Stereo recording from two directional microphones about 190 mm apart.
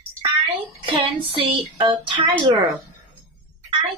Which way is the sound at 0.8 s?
30° right (ahead or behind).